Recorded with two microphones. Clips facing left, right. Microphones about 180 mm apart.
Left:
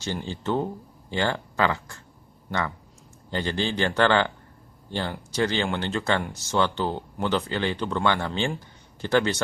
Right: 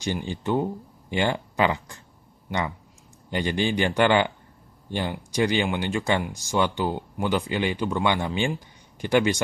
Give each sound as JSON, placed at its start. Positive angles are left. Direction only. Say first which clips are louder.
{"t": 0.0, "sound": "speech", "louder": "right 2 dB", "side_deg": -15}
{"t": 3.3, "sound": "speech", "louder": "right 2 dB", "side_deg": -15}